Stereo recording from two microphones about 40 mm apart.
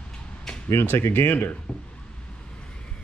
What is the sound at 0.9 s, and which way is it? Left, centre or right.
Speech, left.